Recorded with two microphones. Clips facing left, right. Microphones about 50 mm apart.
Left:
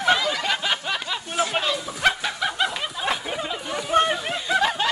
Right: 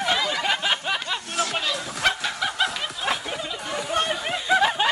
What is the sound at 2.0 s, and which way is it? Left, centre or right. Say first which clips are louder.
Snicker: left 2 dB; centre.